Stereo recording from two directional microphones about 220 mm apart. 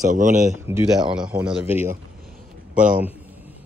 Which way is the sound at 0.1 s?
35° right (ahead or behind).